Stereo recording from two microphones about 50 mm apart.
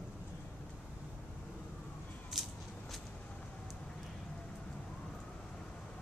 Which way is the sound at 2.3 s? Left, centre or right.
Centre.